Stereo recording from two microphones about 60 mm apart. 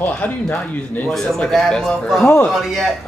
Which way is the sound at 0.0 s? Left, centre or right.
Left.